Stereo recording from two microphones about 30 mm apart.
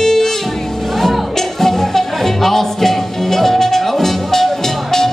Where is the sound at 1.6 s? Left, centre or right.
Centre.